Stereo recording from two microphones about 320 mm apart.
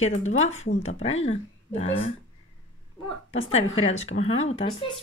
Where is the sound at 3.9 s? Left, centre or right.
Left.